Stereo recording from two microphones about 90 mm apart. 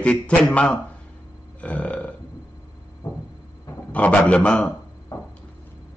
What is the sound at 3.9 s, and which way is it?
Speech, 15° left (ahead or behind).